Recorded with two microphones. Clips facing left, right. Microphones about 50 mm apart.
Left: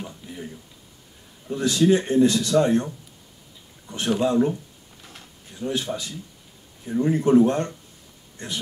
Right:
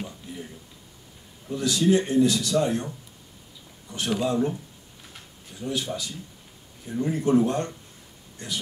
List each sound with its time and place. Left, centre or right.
1.5 s a man's voice: left
3.9 s a man's voice: left
5.6 s speech: left
6.9 s a man's voice: left